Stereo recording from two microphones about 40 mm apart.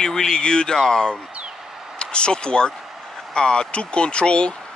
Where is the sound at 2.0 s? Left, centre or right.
Left.